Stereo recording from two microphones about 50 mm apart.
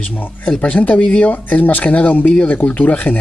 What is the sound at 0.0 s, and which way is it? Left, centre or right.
Speech, left.